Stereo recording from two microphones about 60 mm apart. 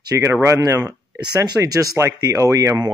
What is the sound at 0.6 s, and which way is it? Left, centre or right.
Speech, right.